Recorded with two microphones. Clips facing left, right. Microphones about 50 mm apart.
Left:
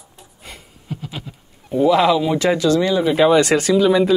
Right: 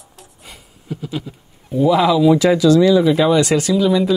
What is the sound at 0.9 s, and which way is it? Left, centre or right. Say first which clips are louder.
Speech: right 3 dB; centre.